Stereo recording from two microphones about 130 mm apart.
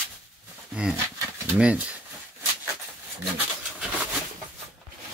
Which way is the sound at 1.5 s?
10° right (ahead or behind).